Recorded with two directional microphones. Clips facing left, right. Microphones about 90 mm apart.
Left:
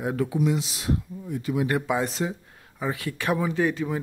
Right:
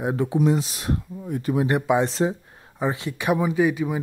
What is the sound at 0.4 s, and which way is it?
Speech, 40° right (ahead or behind).